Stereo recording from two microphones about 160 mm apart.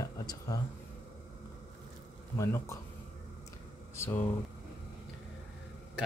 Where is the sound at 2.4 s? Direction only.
20° left (ahead or behind).